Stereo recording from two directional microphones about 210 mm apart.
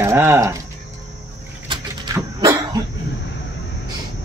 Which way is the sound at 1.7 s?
15° right (ahead or behind).